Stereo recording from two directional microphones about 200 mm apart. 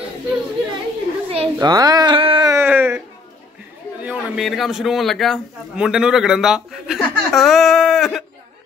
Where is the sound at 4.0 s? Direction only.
5° right (ahead or behind).